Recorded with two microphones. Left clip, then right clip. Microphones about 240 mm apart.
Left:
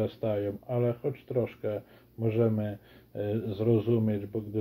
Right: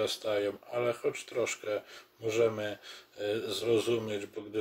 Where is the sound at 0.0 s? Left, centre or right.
Centre.